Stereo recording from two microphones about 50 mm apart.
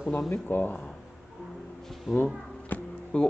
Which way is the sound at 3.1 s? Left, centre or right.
Left.